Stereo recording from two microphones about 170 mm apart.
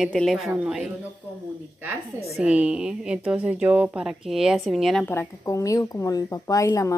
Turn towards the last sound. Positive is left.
turn(degrees=20)  # may be behind; listen again after turning